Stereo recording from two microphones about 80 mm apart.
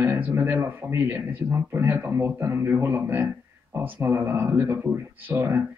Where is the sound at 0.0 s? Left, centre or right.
Right.